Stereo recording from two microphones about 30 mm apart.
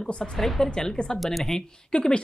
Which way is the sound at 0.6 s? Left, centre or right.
Left.